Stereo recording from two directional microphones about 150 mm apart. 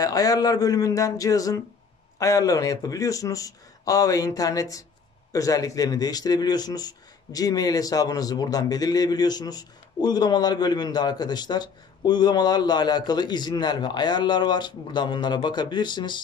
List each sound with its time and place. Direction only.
0.0 s speech: 25° left (ahead or behind)